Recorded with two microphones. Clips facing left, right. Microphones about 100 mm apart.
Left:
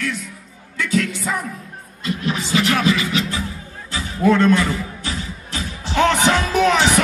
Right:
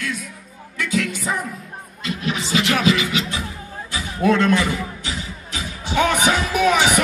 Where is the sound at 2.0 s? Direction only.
20° right (ahead or behind).